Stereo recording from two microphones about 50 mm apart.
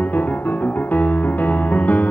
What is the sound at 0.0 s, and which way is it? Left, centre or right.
Music, left.